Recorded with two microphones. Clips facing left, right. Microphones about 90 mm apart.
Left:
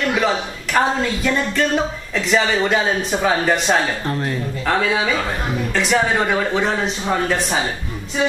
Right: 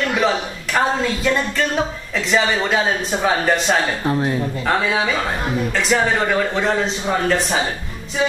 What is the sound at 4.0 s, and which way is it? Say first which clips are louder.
Speech: right 3 dB; 15° right (ahead or behind).